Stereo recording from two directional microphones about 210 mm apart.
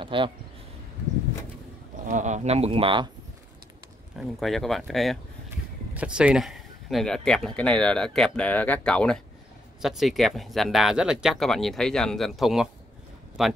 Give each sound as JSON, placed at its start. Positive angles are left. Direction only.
{"t": 0.0, "sound": "speech", "side_deg": -25}
{"t": 2.0, "sound": "speech", "side_deg": -35}
{"t": 4.2, "sound": "speech", "side_deg": 0}